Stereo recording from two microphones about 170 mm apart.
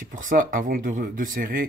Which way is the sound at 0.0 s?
50° right (ahead or behind).